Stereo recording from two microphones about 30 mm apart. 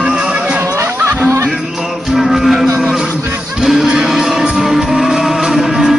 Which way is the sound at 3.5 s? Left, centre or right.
Centre.